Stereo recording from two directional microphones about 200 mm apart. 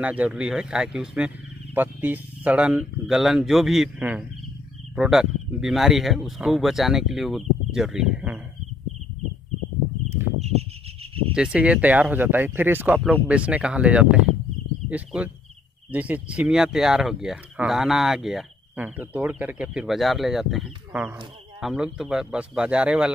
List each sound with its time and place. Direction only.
0.0 s speech: 5° right (ahead or behind)
10.4 s a sound: 30° right (ahead or behind)
11.3 s speech: 5° right (ahead or behind)